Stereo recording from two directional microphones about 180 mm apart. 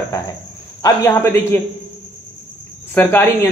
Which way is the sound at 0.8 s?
15° left (ahead or behind).